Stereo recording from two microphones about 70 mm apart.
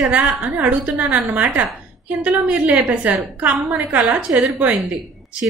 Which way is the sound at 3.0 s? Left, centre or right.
Right.